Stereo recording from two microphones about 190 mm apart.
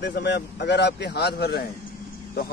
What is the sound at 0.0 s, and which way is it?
A man's voice, 60° left (ahead or behind).